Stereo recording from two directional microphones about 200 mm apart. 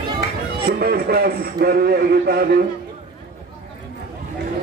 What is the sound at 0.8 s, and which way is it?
Speech, 50° right (ahead or behind).